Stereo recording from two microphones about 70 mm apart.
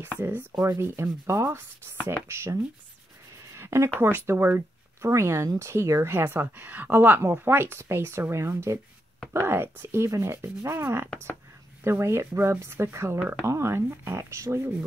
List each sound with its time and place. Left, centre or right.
0.6 s speech: right
3.5 s a sound: right
4.0 s a woman's voice: right